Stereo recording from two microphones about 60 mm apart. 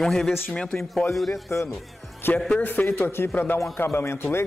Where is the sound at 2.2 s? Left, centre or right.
Left.